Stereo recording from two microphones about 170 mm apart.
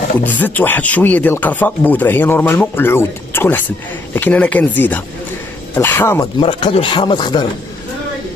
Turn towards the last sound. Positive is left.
turn(degrees=25)  # may be behind; listen again after turning